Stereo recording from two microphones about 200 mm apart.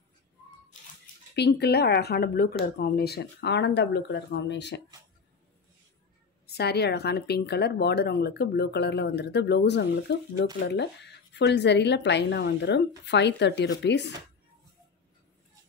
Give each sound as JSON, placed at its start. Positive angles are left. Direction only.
{"t": 1.3, "sound": "speech", "side_deg": 55}
{"t": 6.4, "sound": "speech", "side_deg": 55}